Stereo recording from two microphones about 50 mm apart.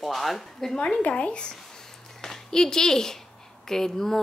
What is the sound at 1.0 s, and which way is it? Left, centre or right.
A woman's voice, left.